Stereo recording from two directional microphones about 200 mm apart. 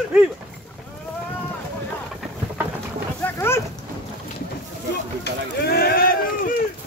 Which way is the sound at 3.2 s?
10° left (ahead or behind).